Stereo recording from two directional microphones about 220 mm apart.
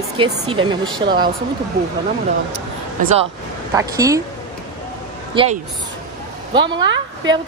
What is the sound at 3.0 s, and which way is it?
Speech, 35° right (ahead or behind).